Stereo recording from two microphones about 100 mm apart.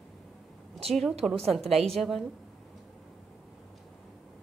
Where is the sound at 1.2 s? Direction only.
Centre (ahead or behind).